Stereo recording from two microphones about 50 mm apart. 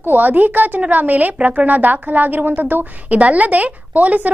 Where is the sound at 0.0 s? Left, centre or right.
Right.